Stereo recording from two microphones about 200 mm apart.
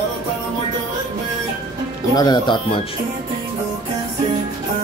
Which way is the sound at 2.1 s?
20° left (ahead or behind).